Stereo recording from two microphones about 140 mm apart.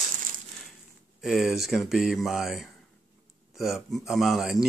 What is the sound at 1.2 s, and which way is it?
Speech, 5° right (ahead or behind).